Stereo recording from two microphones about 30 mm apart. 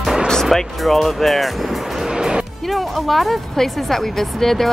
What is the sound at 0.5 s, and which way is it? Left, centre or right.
Music, centre.